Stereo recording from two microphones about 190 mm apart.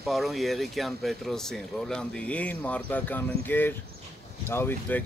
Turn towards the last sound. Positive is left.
turn(degrees=10)  # may be behind; listen again after turning